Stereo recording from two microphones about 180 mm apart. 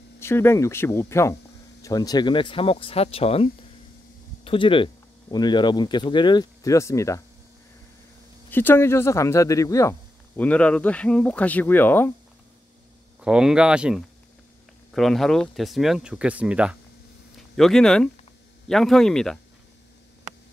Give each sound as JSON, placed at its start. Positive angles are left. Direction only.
{"t": 0.2, "sound": "speech", "side_deg": 15}
{"t": 4.5, "sound": "speech", "side_deg": 30}
{"t": 8.5, "sound": "speech", "side_deg": 10}
{"t": 13.2, "sound": "speech", "side_deg": -5}